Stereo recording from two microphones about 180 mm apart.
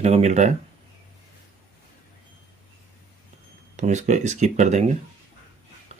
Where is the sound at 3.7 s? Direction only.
40° right (ahead or behind).